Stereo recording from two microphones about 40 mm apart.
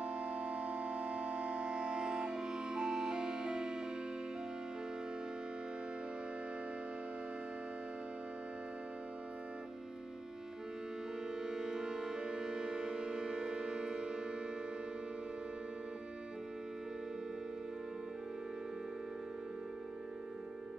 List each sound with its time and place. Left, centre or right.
0.0 s music: right
11.4 s music: centre